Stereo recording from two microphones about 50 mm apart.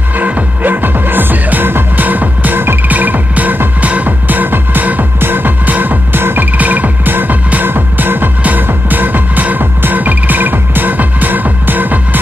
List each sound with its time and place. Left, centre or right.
0.2 s music: right
2.9 s music: right